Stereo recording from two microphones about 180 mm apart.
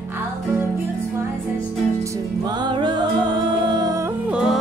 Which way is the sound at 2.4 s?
25° right (ahead or behind).